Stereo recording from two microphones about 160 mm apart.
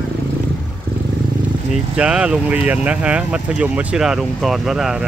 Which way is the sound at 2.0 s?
5° right (ahead or behind).